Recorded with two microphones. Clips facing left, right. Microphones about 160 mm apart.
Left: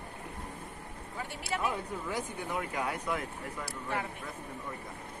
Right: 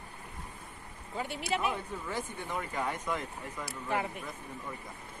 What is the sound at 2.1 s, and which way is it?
Speech, 10° left (ahead or behind).